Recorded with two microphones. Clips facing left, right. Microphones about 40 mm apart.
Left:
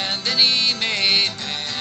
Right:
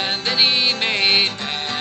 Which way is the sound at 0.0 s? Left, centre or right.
Right.